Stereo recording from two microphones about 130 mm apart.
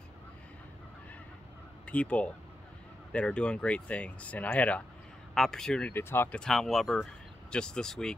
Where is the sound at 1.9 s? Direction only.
10° left (ahead or behind).